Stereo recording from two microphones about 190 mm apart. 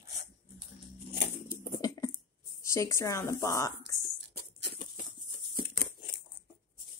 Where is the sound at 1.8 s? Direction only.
20° left (ahead or behind).